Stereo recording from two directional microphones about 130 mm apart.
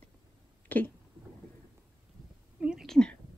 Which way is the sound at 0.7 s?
15° left (ahead or behind).